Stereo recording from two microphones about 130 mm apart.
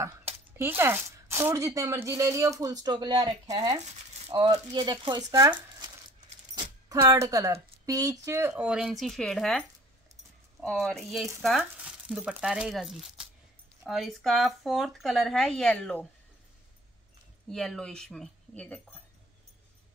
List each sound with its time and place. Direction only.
0.0 s speech: 20° right (ahead or behind)
6.5 s keys jangling: 35° right (ahead or behind)
7.0 s speech: 20° right (ahead or behind); by 16.1 s 10° left (ahead or behind)
17.5 s speech: 5° left (ahead or behind)